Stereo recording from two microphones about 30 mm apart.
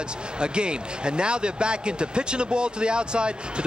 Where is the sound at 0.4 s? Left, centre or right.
Right.